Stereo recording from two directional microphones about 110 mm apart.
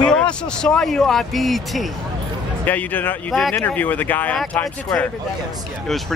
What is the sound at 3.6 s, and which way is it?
Speech, 15° left (ahead or behind).